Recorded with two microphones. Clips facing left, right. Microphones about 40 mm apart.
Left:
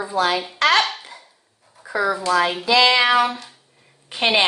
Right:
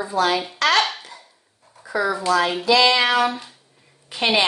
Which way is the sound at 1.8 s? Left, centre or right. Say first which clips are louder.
Left 1 dB; centre.